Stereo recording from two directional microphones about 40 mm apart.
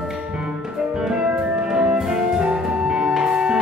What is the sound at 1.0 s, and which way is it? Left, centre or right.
Music, centre.